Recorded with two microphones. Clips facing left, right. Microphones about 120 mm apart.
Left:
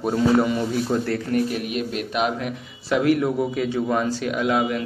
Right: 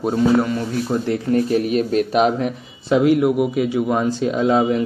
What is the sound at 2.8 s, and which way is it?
Speech, 20° right (ahead or behind).